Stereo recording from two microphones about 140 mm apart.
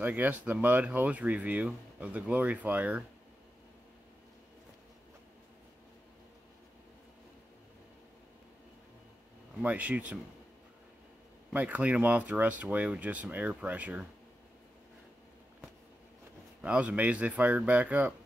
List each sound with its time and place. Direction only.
0.0 s speech: 10° right (ahead or behind)
9.6 s speech: 10° right (ahead or behind)
11.5 s speech: 10° right (ahead or behind)
16.6 s speech: 10° right (ahead or behind)